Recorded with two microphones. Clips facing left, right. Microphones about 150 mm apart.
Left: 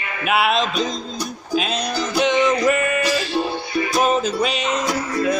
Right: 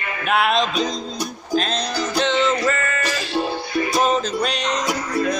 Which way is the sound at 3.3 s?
Centre (ahead or behind).